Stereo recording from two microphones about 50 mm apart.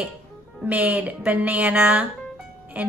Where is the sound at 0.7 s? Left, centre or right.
Right.